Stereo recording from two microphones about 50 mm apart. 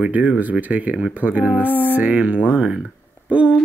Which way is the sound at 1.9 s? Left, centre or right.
Right.